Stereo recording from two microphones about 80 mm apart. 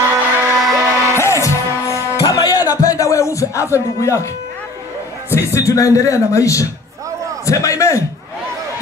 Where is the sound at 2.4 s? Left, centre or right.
Left.